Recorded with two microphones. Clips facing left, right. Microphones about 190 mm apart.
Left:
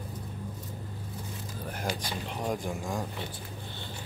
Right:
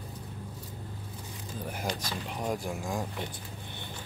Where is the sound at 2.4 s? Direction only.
5° right (ahead or behind).